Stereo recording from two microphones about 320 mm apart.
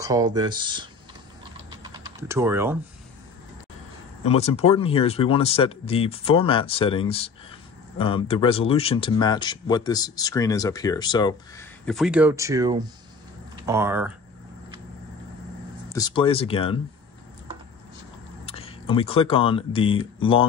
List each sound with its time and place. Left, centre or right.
0.0 s speech: centre
1.8 s typing: centre
4.2 s speech: centre
11.8 s speech: centre
15.9 s speech: centre
18.4 s speech: centre